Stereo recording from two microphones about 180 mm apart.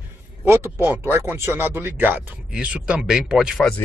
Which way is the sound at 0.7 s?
10° right (ahead or behind).